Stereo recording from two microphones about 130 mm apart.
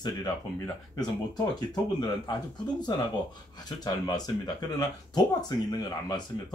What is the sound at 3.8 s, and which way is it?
Speech, 30° left (ahead or behind).